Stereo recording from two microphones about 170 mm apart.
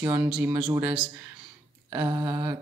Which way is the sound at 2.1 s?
25° right (ahead or behind).